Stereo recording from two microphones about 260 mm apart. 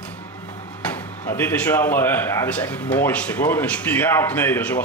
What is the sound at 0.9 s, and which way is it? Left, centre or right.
Speech, centre.